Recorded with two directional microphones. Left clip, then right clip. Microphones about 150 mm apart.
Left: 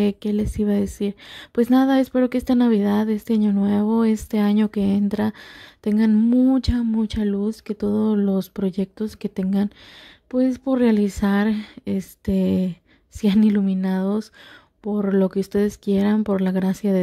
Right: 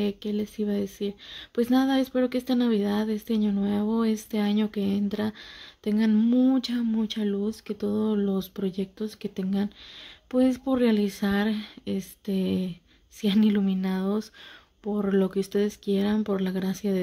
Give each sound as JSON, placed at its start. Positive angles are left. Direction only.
{"t": 0.0, "sound": "speech", "side_deg": 45}
{"t": 10.3, "sound": "speech", "side_deg": 25}